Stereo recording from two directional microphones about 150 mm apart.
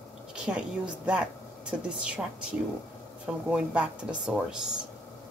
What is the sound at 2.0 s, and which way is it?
Speech, 5° right (ahead or behind).